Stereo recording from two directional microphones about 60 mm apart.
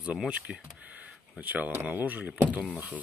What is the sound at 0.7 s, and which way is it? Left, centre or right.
Camera, right.